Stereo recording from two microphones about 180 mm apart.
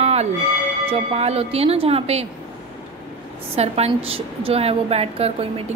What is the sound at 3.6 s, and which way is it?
A woman's voice, 35° right (ahead or behind).